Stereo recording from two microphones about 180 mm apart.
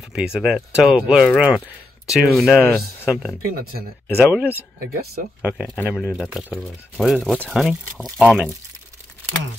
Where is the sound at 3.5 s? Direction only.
55° right (ahead or behind).